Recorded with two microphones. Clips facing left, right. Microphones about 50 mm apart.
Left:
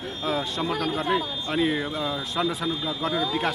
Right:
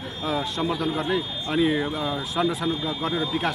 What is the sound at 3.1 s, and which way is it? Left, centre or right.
Speech, right.